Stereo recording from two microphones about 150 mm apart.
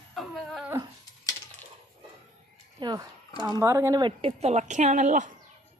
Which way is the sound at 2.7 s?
30° right (ahead or behind).